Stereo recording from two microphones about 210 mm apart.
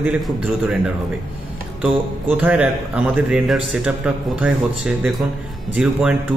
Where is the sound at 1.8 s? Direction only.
5° right (ahead or behind).